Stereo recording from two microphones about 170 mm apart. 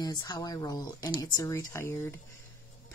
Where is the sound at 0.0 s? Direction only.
25° left (ahead or behind).